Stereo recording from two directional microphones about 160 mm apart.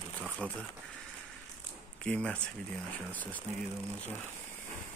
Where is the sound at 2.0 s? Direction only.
5° left (ahead or behind).